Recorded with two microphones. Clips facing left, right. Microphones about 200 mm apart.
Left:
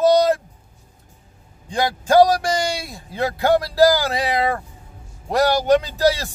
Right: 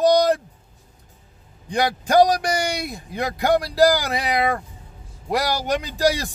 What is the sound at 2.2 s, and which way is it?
Speech, 15° right (ahead or behind).